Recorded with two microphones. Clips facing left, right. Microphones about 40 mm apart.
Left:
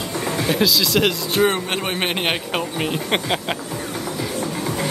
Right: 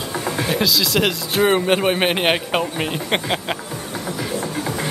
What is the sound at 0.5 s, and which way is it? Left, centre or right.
Speech, centre.